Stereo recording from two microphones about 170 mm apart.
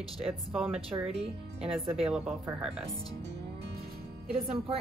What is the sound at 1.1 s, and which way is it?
Speech, 35° right (ahead or behind).